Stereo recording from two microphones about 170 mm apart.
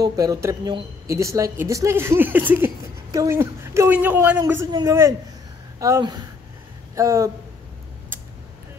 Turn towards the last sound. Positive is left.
turn(degrees=-20)  # may be behind; listen again after turning